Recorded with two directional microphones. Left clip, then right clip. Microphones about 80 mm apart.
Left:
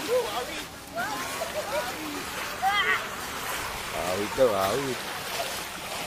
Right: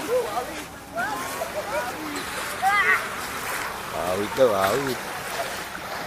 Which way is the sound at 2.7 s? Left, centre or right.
Centre.